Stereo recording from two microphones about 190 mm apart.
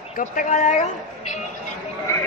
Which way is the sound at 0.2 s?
40° left (ahead or behind).